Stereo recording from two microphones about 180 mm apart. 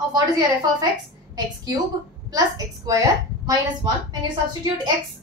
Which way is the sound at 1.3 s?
20° right (ahead or behind).